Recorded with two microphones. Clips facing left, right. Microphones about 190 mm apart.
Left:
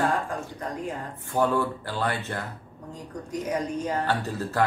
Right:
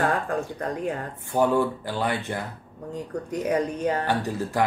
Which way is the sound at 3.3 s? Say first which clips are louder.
Right 3 dB; 60° right (ahead or behind).